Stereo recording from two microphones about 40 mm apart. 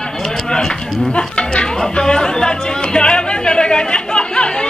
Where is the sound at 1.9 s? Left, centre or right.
Centre.